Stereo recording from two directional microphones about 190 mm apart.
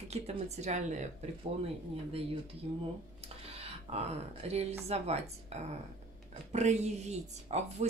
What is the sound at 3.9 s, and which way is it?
Speech, 30° right (ahead or behind).